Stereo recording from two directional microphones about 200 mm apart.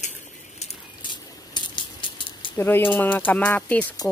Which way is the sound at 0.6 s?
25° left (ahead or behind).